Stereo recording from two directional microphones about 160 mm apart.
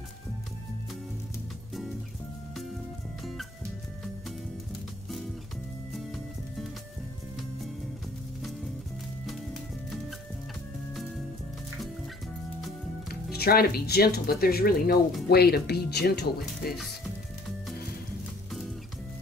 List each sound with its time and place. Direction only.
5.9 s music: centre (ahead or behind)
9.2 s music: centre (ahead or behind)
13.1 s speech: 75° left (ahead or behind)
15.2 s speech: 80° left